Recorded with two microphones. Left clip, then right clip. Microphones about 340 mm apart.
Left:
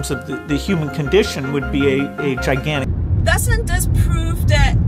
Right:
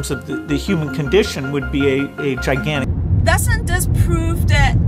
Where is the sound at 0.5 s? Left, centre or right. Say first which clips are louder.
Even; centre.